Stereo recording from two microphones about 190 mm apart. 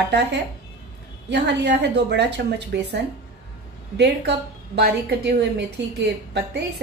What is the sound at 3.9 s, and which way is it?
Speech, 65° right (ahead or behind).